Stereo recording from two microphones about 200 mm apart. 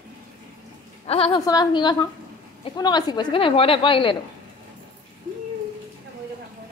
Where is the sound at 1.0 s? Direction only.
30° left (ahead or behind).